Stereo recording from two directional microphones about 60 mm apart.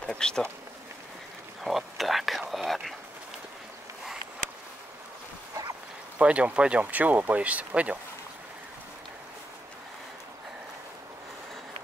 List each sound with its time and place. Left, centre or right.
0.0 s speech: centre
1.6 s whispering: centre
6.1 s speech: right